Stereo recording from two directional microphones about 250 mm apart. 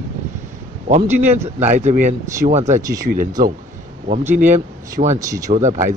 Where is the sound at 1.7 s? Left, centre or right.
Right.